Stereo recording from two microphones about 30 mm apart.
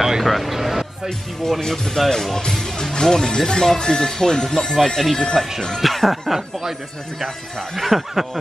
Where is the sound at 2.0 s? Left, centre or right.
Centre.